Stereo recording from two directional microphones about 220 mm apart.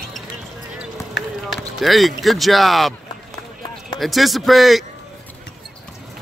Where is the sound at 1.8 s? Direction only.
Centre (ahead or behind).